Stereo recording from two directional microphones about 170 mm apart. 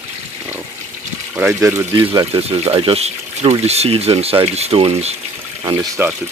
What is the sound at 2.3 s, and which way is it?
Speech, 35° right (ahead or behind).